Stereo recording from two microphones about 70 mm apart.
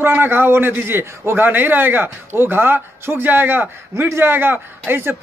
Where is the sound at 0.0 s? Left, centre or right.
Right.